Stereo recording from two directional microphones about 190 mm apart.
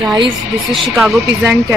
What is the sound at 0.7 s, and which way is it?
Speech, centre (ahead or behind).